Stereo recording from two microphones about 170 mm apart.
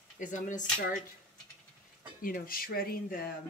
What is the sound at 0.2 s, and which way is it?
Speech, 45° left (ahead or behind).